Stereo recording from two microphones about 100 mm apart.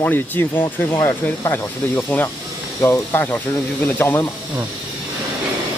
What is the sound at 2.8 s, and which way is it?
Speech, 25° left (ahead or behind).